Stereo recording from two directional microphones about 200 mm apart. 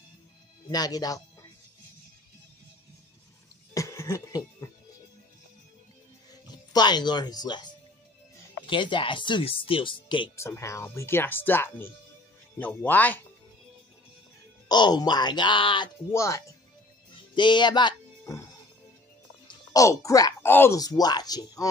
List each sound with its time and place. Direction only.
0.7 s speech: 20° left (ahead or behind)
3.7 s cough: 15° left (ahead or behind)
6.3 s speech: 20° left (ahead or behind)
10.3 s speech: 15° left (ahead or behind)
14.7 s speech: 20° left (ahead or behind)
17.1 s music: 25° left (ahead or behind)
19.4 s speech: 15° left (ahead or behind)